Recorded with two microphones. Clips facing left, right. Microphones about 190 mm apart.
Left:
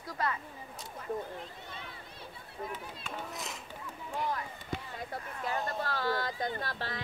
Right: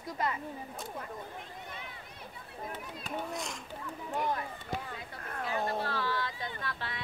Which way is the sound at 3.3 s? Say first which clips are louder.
Right 3 dB; 5° left (ahead or behind).